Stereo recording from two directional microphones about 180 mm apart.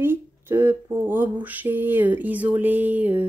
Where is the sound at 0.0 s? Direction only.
15° right (ahead or behind).